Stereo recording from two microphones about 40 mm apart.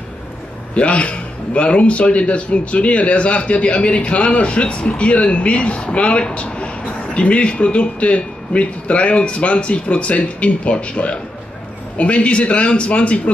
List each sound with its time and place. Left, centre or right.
0.7 s a man's voice: left